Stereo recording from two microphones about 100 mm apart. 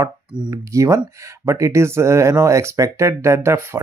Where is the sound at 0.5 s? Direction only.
30° right (ahead or behind).